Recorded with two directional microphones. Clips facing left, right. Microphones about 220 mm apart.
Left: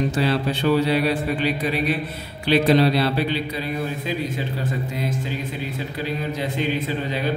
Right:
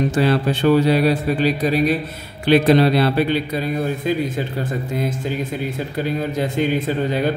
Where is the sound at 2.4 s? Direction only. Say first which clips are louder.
Right 3 dB; 50° right (ahead or behind).